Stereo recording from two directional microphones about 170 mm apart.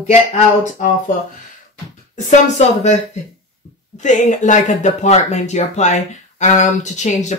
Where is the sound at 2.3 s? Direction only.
45° left (ahead or behind).